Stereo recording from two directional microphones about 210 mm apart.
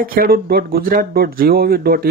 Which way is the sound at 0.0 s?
45° right (ahead or behind).